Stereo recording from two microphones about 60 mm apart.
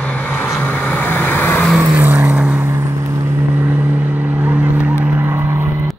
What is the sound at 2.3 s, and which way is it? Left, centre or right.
Vehicle, right.